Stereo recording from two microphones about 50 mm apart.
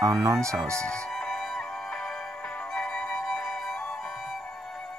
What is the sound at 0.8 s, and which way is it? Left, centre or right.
Music, centre.